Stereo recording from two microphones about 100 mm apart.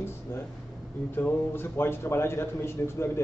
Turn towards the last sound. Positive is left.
turn(degrees=25)  # may be behind; listen again after turning